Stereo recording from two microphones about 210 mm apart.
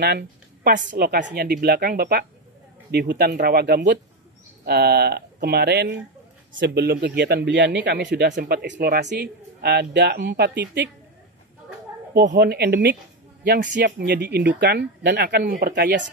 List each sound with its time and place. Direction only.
0.7 s speech: 50° right (ahead or behind)
12.1 s speech: 50° right (ahead or behind)